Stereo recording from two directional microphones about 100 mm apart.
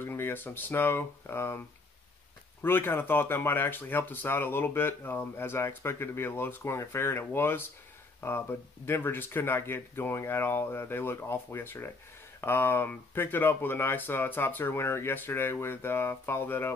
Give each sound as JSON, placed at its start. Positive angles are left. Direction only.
{"t": 0.0, "sound": "speech", "side_deg": 20}
{"t": 2.6, "sound": "speech", "side_deg": 20}